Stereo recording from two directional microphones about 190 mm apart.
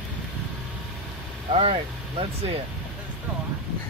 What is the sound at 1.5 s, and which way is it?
Speech, 30° right (ahead or behind).